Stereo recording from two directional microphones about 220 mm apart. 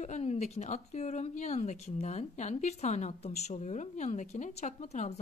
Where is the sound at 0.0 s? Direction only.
30° left (ahead or behind).